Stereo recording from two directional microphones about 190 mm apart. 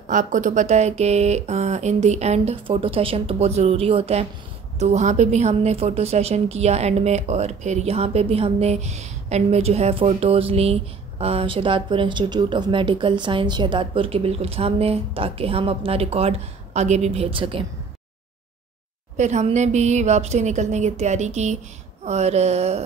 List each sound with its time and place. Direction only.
0.0 s a woman's voice: 40° right (ahead or behind)
19.1 s a woman's voice: 40° right (ahead or behind)